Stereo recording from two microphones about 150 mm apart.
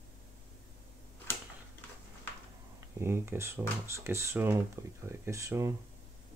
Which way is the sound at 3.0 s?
20° right (ahead or behind).